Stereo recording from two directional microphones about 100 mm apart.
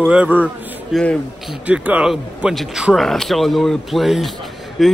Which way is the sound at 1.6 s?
15° right (ahead or behind).